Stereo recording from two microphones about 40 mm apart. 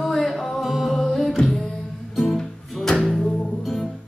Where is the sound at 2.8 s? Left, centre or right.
Centre.